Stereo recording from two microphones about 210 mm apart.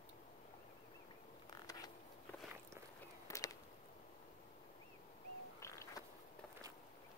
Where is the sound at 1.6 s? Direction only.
20° left (ahead or behind).